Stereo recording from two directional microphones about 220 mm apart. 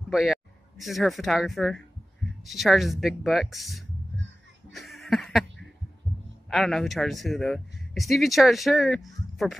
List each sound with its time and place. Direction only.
0.1 s a man's voice: centre (ahead or behind)
4.7 s a sound: centre (ahead or behind)
6.5 s a man's voice: centre (ahead or behind)